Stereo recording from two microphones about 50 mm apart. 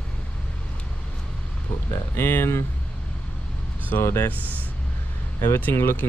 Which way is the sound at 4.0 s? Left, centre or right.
Left.